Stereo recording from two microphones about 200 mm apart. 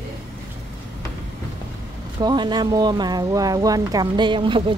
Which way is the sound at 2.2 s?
20° right (ahead or behind).